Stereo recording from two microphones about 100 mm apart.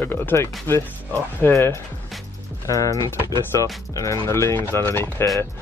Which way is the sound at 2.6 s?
35° left (ahead or behind).